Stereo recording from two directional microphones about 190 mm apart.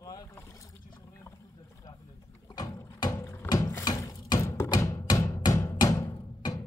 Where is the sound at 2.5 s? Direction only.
15° left (ahead or behind).